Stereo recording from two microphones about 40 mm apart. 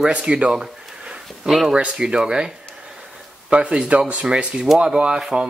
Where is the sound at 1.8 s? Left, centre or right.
Right.